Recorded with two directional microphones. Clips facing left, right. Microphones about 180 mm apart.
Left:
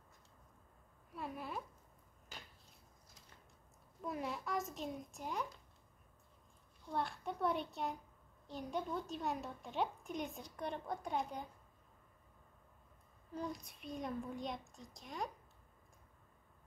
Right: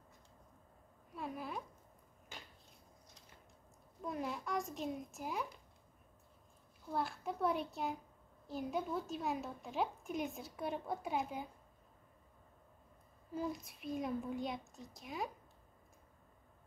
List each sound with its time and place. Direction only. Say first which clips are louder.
1.1 s a woman's voice: right 1 dB; centre (ahead or behind)
4.0 s speech: right 1 dB; centre (ahead or behind)
6.9 s speech: right 1 dB; centre (ahead or behind)
13.3 s speech: right 3 dB; 5° right (ahead or behind)